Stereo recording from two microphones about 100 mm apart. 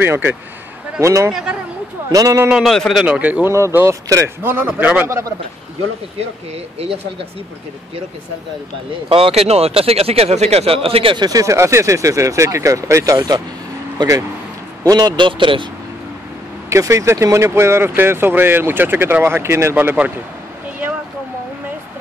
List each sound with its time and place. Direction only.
0.0 s speech: 20° right (ahead or behind)
1.3 s speech: 10° right (ahead or behind)
2.1 s speech: 35° right (ahead or behind)
2.5 s a man's voice: centre (ahead or behind)
3.2 s speech: 15° right (ahead or behind)
3.5 s speech: 25° right (ahead or behind)
6.5 s speech: 80° right
9.1 s speech: 75° right (ahead or behind)
11.1 s speech: 40° right (ahead or behind)
14.8 s speech: 40° right (ahead or behind); by 15.7 s 55° right (ahead or behind)
16.6 s speech: 30° right (ahead or behind)